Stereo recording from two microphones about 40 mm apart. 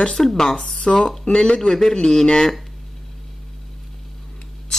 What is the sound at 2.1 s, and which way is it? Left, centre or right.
Speech, centre.